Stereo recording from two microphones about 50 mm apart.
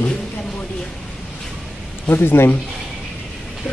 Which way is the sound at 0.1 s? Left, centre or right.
Centre.